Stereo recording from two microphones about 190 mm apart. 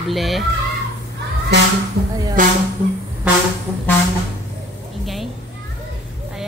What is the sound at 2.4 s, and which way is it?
Speech, 45° right (ahead or behind).